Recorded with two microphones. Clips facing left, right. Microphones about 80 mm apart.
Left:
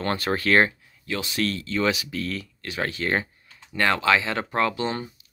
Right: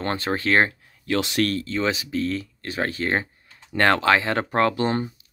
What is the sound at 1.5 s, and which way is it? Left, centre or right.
Speech, right.